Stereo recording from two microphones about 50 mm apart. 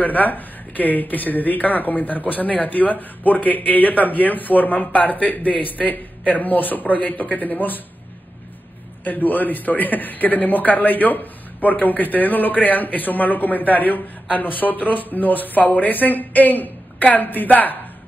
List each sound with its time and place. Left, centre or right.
0.0 s speech: left
9.0 s speech: left